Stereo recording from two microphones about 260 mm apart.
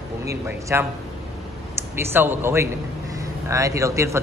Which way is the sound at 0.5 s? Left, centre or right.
Centre.